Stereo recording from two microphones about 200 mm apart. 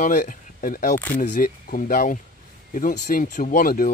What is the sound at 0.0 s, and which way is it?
Speech, 40° left (ahead or behind).